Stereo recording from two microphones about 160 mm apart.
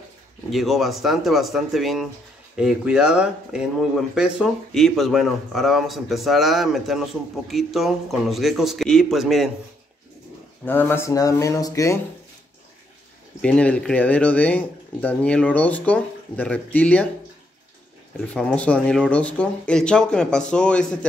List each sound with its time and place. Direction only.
0.5 s speech: centre (ahead or behind)
10.6 s speech: 15° left (ahead or behind)
13.4 s speech: 10° left (ahead or behind)
18.1 s speech: 5° left (ahead or behind)